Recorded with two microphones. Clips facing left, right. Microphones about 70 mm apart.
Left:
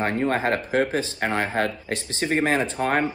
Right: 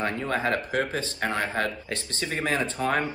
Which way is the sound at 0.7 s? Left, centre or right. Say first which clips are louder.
Left 5 dB; left.